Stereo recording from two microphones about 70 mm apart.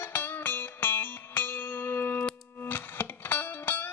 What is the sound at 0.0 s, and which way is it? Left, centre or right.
Music, left.